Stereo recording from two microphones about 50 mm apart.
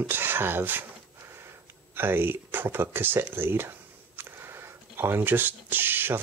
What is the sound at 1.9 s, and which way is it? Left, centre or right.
Speech, right.